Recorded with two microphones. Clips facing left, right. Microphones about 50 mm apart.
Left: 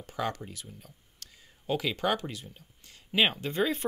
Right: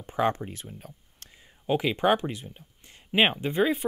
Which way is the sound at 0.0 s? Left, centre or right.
Right.